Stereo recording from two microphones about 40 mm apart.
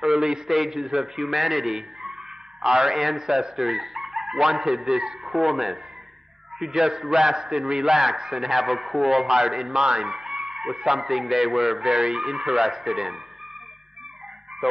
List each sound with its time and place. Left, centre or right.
0.5 s a man's voice: centre